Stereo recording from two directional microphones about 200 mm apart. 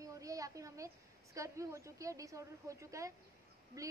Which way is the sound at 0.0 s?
15° right (ahead or behind).